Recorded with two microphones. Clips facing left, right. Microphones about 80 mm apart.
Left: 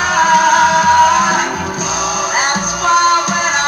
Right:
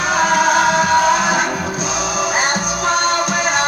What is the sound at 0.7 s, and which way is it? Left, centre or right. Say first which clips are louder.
Music: left 4 dB; left.